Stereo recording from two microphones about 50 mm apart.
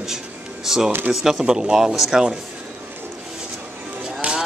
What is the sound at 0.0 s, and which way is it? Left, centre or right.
Music, centre.